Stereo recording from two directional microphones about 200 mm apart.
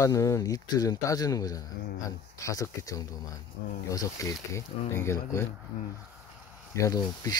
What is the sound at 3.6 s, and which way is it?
Speech, 50° left (ahead or behind).